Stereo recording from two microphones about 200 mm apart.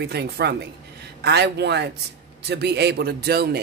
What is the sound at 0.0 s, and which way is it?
A man's voice, 55° right (ahead or behind).